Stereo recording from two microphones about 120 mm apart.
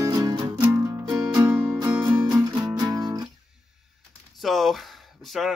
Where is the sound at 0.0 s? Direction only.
30° right (ahead or behind).